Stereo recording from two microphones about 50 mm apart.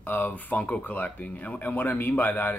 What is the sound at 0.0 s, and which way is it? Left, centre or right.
Speech, left.